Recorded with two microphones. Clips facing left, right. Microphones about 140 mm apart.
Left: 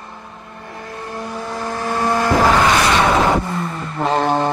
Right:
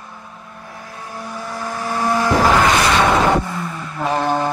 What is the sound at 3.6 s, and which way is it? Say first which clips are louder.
Vehicle: left 2 dB; 35° left (ahead or behind).